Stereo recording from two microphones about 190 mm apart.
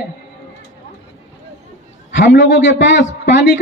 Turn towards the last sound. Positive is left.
turn(degrees=70)  # may be behind; listen again after turning